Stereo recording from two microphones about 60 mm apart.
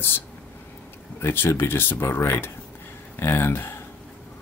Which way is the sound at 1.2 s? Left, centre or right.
Left.